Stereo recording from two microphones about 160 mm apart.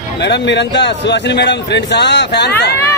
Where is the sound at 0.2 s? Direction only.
90° left.